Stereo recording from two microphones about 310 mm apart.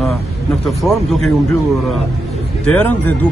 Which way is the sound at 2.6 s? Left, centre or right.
Centre.